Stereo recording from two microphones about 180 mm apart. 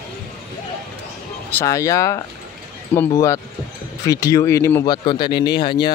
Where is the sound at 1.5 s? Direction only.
15° left (ahead or behind).